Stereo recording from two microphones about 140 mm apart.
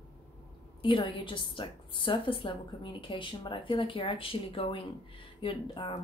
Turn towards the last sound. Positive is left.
turn(degrees=35)  # may be behind; listen again after turning